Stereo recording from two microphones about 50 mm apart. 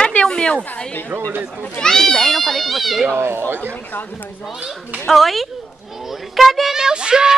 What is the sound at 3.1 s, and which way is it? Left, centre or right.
Speech, right.